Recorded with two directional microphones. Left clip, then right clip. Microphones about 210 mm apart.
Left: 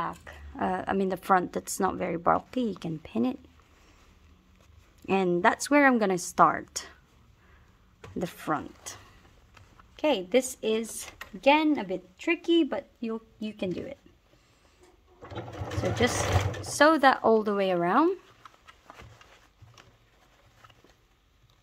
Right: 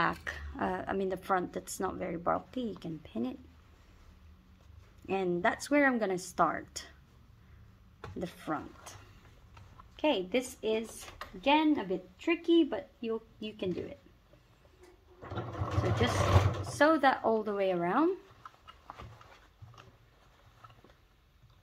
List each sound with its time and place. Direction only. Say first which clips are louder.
0.0 s a sound: right 3 dB; centre (ahead or behind)
0.5 s a woman's voice: left 6 dB; 25° left (ahead or behind); by 3.3 s 45° left (ahead or behind)
5.0 s a woman's voice: left 7 dB; 45° left (ahead or behind)
8.2 s a woman's voice: left 7 dB; 50° left (ahead or behind)
9.9 s speech: left 5 dB; 55° left (ahead or behind)
16.6 s a woman's voice: left 6 dB; 55° left (ahead or behind)